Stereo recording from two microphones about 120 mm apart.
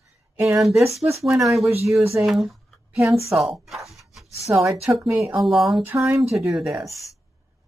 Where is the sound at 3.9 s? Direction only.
Centre (ahead or behind).